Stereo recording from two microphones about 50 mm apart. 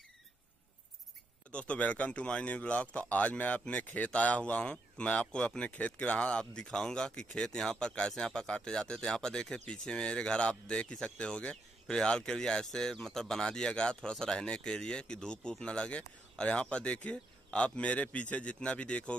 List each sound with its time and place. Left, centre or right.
1.5 s speech: left